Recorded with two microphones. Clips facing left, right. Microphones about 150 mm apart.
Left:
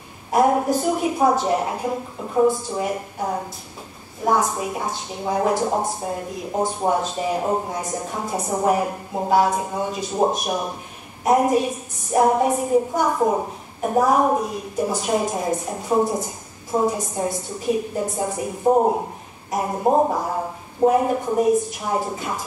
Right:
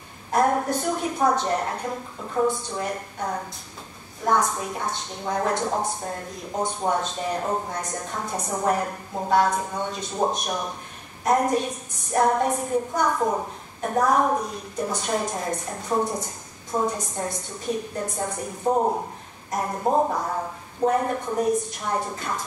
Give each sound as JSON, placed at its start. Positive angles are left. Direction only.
{"t": 0.3, "sound": "a woman's voice", "side_deg": 5}